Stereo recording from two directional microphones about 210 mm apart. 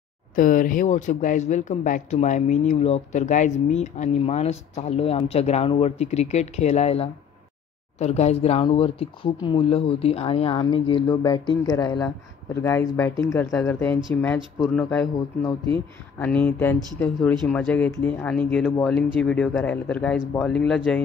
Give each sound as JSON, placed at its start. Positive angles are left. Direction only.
{"t": 0.4, "sound": "speech", "side_deg": 40}
{"t": 14.9, "sound": "speech", "side_deg": 10}